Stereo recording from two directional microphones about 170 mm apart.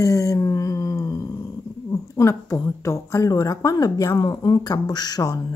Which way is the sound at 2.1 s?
20° left (ahead or behind).